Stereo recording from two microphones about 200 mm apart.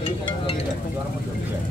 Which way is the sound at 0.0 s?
25° left (ahead or behind).